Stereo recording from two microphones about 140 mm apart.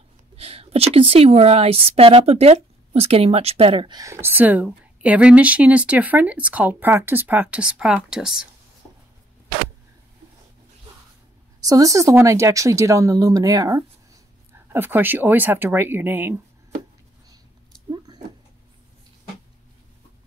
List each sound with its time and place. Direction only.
0.4 s a woman's voice: 45° right (ahead or behind)
4.0 s speech: 20° right (ahead or behind)
11.6 s speech: 25° right (ahead or behind)
17.8 s a sound: 30° right (ahead or behind)